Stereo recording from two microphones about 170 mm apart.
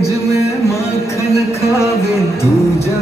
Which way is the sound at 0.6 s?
15° left (ahead or behind).